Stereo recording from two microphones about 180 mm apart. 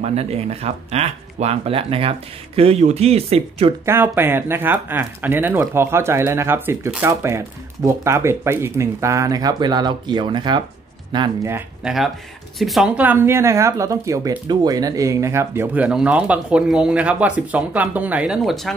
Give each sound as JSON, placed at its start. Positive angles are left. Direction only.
{"t": 0.0, "sound": "speech", "side_deg": -35}
{"t": 3.8, "sound": "speech", "side_deg": -10}
{"t": 11.4, "sound": "speech", "side_deg": -10}
{"t": 12.5, "sound": "speech", "side_deg": 0}